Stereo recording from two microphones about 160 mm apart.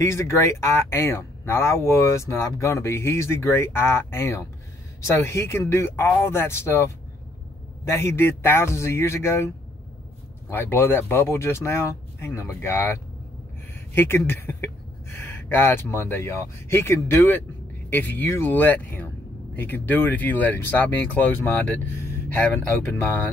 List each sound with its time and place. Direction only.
0.0 s speech: 20° left (ahead or behind)
10.5 s speech: 15° left (ahead or behind)
13.9 s speech: 15° left (ahead or behind)
22.6 s speech: 15° left (ahead or behind)